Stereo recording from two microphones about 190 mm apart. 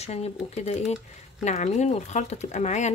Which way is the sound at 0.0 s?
35° left (ahead or behind).